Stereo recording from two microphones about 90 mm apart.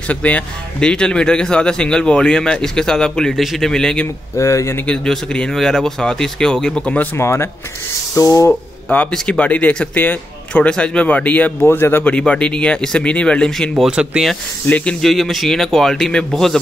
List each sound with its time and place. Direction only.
0.1 s speech: 15° left (ahead or behind)
4.4 s speech: 35° left (ahead or behind)
4.8 s speech: 5° left (ahead or behind)
7.2 s speech: 30° left (ahead or behind)
8.1 s speech: 40° left (ahead or behind)
8.5 s speech: 15° left (ahead or behind)
12.1 s speech: 10° left (ahead or behind)
13.7 s speech: 10° right (ahead or behind)
14.7 s speech: 25° left (ahead or behind)
15.0 s a man's voice: 5° left (ahead or behind)